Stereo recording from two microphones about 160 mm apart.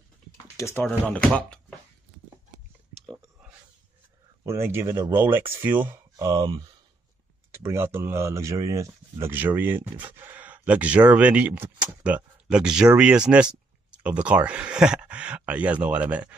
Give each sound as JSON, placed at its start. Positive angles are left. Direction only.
{"t": 0.6, "sound": "speech", "side_deg": 15}
{"t": 0.8, "sound": "speech", "side_deg": 5}
{"t": 4.5, "sound": "speech", "side_deg": -15}
{"t": 6.2, "sound": "speech", "side_deg": -25}